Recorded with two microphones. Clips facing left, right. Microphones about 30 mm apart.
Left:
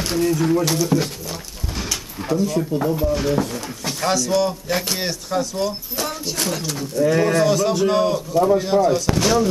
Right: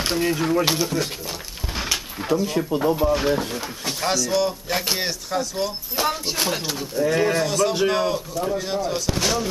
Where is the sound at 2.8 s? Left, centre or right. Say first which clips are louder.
Right 3 dB; centre.